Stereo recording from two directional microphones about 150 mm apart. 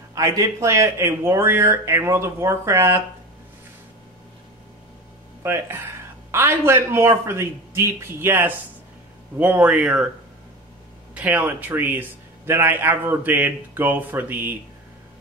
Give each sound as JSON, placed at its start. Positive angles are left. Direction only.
{"t": 0.1, "sound": "a man's voice", "side_deg": -25}
{"t": 5.4, "sound": "a man's voice", "side_deg": -15}
{"t": 11.1, "sound": "a man's voice", "side_deg": -10}